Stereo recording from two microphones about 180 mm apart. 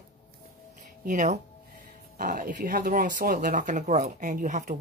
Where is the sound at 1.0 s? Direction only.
45° right (ahead or behind).